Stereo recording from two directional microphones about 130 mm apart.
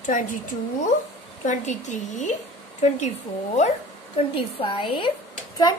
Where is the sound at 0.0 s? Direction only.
75° left (ahead or behind).